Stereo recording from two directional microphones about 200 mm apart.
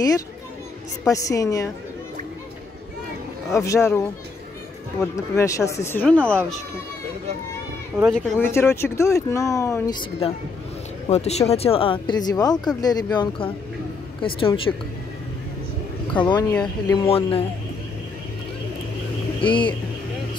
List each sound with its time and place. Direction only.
1.0 s speech: 15° left (ahead or behind)
3.5 s speech: 15° left (ahead or behind)
5.3 s speech: 15° left (ahead or behind)
8.1 s speech: 5° left (ahead or behind)
11.1 s speech: 30° left (ahead or behind)
16.1 s speech: 20° left (ahead or behind)
19.4 s speech: 25° left (ahead or behind)